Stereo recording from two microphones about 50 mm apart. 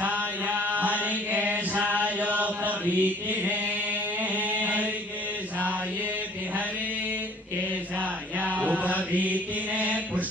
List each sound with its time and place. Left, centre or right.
0.0 s chant: right
8.0 s chant: right